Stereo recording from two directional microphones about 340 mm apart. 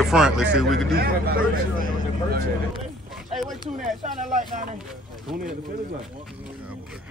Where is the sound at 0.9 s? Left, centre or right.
Right.